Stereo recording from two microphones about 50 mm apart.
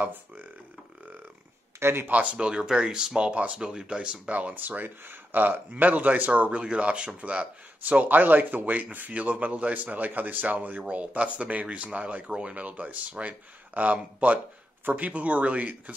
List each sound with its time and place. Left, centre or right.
0.0 s speech: right
1.8 s speech: right
2.0 s speech: right
2.3 s speech: centre